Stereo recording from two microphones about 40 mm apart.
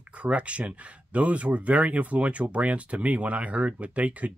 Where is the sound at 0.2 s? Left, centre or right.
Right.